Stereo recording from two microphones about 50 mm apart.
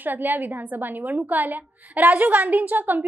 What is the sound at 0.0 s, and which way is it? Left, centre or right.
A woman's voice, right.